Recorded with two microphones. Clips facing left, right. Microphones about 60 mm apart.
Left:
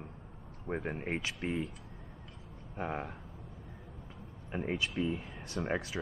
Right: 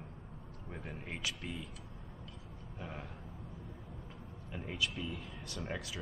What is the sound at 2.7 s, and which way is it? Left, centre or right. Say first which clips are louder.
Speech: left 9 dB; left.